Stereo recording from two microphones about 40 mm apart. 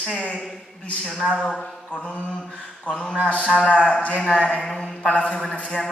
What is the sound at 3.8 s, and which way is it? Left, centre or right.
Speech, left.